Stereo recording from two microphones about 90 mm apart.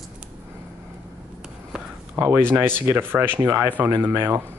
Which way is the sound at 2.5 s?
25° right (ahead or behind).